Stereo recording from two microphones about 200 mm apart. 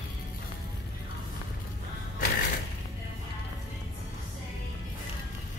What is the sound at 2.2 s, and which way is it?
Mechanisms, 45° left (ahead or behind).